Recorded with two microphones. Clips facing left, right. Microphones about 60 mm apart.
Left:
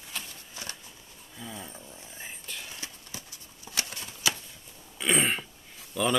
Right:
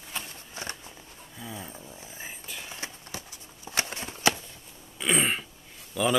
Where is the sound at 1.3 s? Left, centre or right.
Centre.